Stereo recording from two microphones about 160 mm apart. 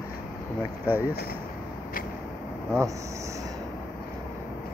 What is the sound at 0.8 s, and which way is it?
Speech, 10° right (ahead or behind).